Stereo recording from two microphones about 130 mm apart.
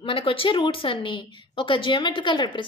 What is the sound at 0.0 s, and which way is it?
A woman's voice, 45° left (ahead or behind).